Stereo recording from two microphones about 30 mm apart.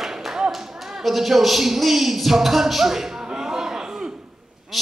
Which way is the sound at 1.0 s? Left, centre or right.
Centre.